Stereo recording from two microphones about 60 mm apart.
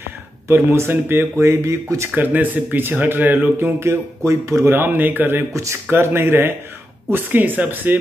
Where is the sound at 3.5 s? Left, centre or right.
Right.